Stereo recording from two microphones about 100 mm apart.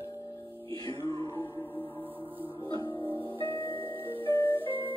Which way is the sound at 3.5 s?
65° right (ahead or behind).